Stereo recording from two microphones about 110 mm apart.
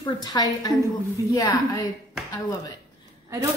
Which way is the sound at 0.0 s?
40° left (ahead or behind).